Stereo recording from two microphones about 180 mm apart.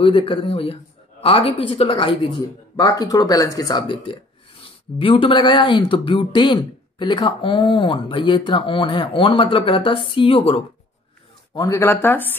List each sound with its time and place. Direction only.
0.0 s speech: 30° left (ahead or behind)
11.5 s speech: 15° left (ahead or behind)